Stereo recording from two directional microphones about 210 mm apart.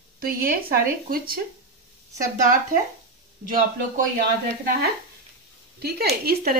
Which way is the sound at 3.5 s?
40° right (ahead or behind).